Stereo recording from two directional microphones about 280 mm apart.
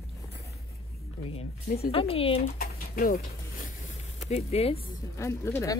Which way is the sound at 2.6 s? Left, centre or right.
Left.